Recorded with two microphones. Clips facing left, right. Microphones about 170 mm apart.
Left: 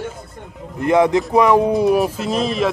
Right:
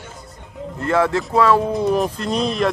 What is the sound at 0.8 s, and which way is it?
Speech, 15° left (ahead or behind).